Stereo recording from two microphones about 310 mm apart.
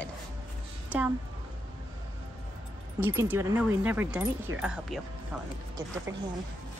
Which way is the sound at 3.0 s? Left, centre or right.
Centre.